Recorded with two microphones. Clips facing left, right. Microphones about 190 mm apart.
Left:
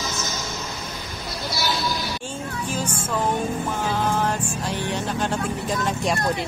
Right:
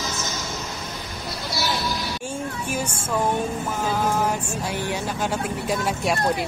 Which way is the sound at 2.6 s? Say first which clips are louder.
Even; 10° right (ahead or behind).